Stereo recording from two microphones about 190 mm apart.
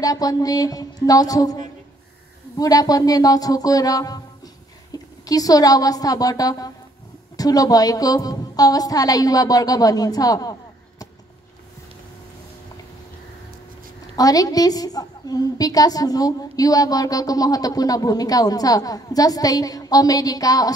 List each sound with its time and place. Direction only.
0.0 s a woman's voice: 20° left (ahead or behind)
14.1 s a woman's voice: 20° left (ahead or behind)